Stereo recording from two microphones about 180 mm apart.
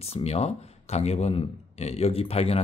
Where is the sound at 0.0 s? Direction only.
35° left (ahead or behind).